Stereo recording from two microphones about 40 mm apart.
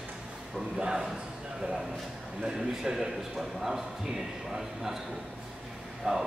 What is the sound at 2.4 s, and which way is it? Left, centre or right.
A man's voice, centre.